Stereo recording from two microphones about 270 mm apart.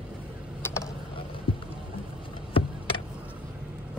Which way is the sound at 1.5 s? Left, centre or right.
Centre.